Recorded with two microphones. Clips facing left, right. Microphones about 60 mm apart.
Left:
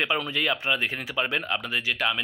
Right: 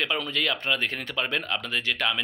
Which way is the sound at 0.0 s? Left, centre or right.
Centre.